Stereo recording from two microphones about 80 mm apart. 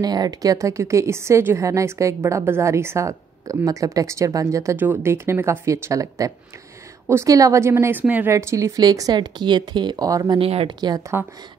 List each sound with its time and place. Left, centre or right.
0.0 s speech: right
4.7 s a woman's voice: right
8.3 s speech: right
10.2 s speech: right